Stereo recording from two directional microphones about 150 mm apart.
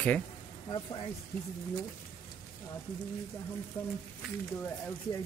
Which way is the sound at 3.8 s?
Centre (ahead or behind).